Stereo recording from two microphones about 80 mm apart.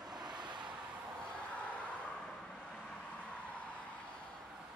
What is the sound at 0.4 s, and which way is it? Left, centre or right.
Vehicle, right.